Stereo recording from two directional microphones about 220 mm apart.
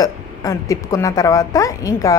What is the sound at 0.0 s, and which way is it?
Speech, 15° left (ahead or behind).